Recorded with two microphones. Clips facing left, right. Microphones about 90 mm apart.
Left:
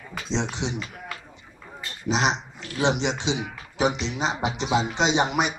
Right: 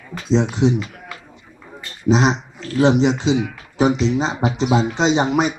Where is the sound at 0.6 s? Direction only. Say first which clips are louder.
Right 13 dB; 45° right (ahead or behind).